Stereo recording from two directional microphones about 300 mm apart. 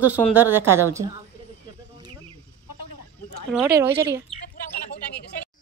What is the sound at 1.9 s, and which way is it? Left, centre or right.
Cricket, centre.